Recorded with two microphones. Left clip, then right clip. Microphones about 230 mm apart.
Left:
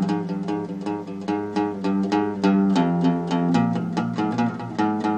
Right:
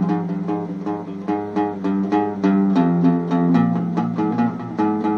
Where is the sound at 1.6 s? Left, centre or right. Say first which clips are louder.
Right 2 dB; left.